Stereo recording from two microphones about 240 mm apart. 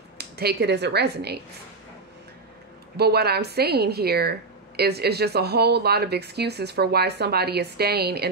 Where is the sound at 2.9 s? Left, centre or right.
Right.